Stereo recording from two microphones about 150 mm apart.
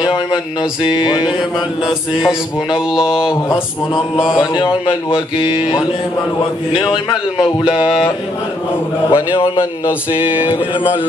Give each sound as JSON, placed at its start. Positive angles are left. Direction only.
{"t": 0.0, "sound": "speech", "side_deg": 30}
{"t": 2.2, "sound": "mantra", "side_deg": -5}
{"t": 4.6, "sound": "speech", "side_deg": 35}
{"t": 9.1, "sound": "a man's voice", "side_deg": 20}